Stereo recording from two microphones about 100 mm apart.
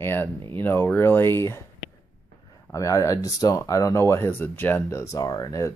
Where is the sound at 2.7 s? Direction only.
35° left (ahead or behind).